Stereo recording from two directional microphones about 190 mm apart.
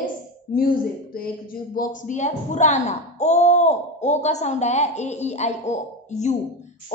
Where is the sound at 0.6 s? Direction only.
50° left (ahead or behind).